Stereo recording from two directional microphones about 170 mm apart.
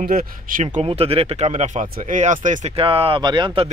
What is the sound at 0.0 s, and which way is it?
Speech, 60° right (ahead or behind).